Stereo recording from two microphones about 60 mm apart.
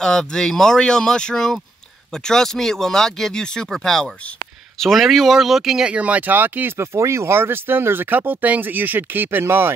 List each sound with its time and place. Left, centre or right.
0.0 s speech: centre
5.9 s speech: right
6.8 s speech: right